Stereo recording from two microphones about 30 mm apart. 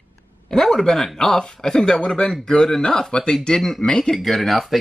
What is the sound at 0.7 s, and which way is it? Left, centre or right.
Speech, centre.